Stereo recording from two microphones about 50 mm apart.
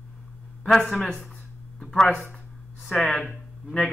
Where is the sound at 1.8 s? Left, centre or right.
Centre.